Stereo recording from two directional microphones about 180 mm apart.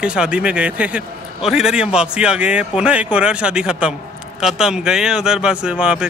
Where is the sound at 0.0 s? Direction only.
5° right (ahead or behind).